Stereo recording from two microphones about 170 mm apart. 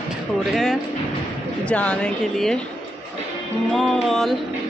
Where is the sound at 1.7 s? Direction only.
5° left (ahead or behind).